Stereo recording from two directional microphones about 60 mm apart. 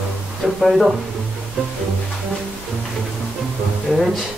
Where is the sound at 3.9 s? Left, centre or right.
Centre.